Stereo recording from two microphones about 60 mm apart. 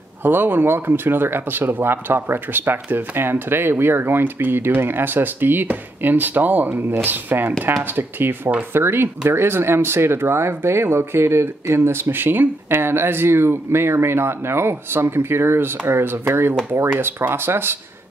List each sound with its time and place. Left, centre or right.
0.2 s speech: right